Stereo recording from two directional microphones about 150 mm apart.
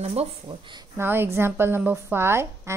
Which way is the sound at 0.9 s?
15° right (ahead or behind).